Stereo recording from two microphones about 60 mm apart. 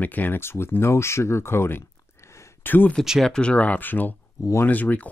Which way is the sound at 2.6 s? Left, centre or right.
Left.